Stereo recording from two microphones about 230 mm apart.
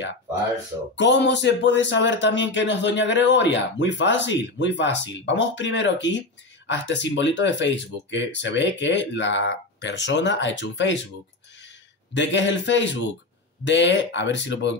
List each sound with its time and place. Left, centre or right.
0.9 s speech: left